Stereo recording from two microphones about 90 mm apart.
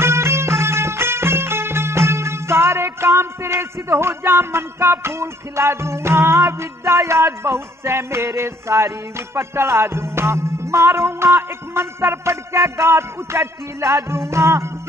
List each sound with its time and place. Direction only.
0.0 s music: 30° right (ahead or behind)